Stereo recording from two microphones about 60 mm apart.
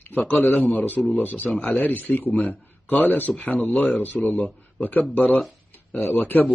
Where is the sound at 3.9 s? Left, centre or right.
Left.